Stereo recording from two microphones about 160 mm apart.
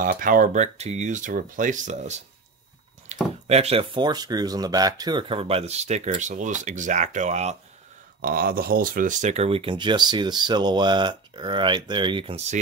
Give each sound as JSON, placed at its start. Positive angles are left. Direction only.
{"t": 0.0, "sound": "speech", "side_deg": -60}
{"t": 3.1, "sound": "a sound", "side_deg": -45}
{"t": 3.4, "sound": "speech", "side_deg": -40}
{"t": 8.2, "sound": "speech", "side_deg": -65}